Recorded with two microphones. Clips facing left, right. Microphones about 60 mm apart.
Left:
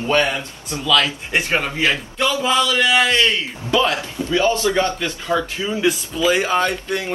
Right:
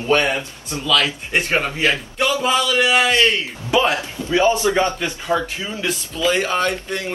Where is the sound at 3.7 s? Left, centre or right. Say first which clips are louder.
Right 1 dB; right.